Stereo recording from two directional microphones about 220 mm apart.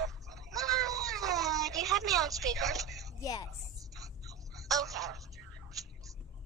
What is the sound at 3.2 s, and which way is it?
Speech, 15° left (ahead or behind).